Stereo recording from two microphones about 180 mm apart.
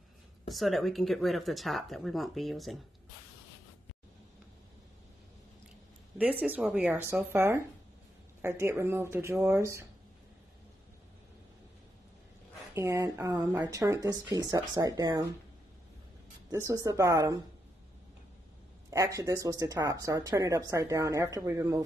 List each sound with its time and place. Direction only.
0.5 s speech: centre (ahead or behind)
6.1 s speech: 10° right (ahead or behind)
12.7 s speech: 15° right (ahead or behind)
16.4 s speech: 15° right (ahead or behind)
18.9 s speech: 15° right (ahead or behind)